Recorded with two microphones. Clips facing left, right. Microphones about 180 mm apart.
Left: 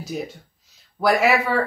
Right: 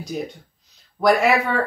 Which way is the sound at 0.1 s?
5° left (ahead or behind).